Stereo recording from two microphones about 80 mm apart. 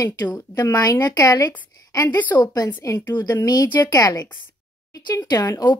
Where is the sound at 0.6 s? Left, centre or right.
Left.